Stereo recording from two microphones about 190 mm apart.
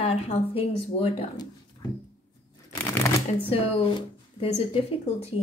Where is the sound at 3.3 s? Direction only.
30° left (ahead or behind).